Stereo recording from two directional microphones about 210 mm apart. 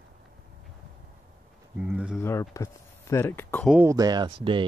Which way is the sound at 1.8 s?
5° right (ahead or behind).